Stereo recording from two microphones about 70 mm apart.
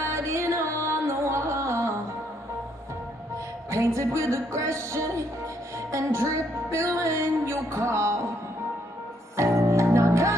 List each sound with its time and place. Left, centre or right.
0.0 s music: right
3.7 s music: right
9.4 s music: right